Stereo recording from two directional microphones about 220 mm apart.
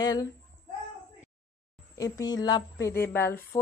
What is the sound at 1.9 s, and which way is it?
A woman's voice, 15° left (ahead or behind).